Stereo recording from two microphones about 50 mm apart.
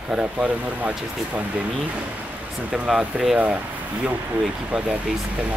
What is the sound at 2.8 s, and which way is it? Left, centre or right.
Speech, centre.